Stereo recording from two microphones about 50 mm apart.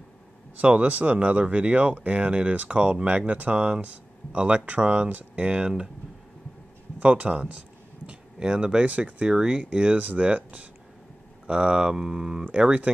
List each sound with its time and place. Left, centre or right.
0.6 s speech: right
7.0 s speech: right
9.3 s speech: centre
12.4 s speech: right